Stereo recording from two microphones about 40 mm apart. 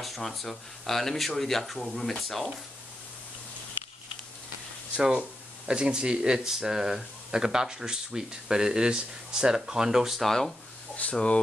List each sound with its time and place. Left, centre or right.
0.0 s speech: centre
5.7 s speech: right
10.2 s speech: centre
11.0 s speech: left